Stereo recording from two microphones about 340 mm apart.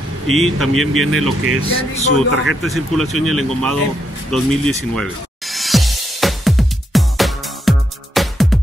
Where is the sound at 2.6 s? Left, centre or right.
Centre.